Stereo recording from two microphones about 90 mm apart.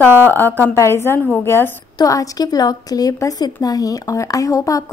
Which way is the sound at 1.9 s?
40° left (ahead or behind).